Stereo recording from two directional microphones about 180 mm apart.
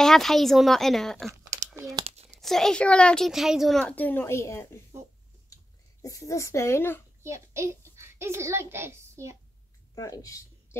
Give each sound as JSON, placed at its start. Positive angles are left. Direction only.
{"t": 0.0, "sound": "a woman's voice", "side_deg": 0}
{"t": 1.8, "sound": "speech", "side_deg": -20}
{"t": 2.0, "sound": "a sound", "side_deg": -35}
{"t": 2.4, "sound": "a woman's voice", "side_deg": 0}
{"t": 6.0, "sound": "speech", "side_deg": 15}
{"t": 7.2, "sound": "a child's voice", "side_deg": -15}
{"t": 9.9, "sound": "speech", "side_deg": 20}